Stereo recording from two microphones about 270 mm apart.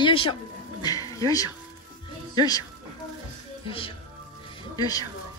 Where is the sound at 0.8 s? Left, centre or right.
Centre.